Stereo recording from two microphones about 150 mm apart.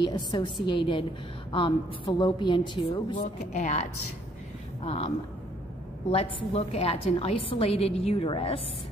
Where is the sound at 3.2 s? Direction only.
50° left (ahead or behind).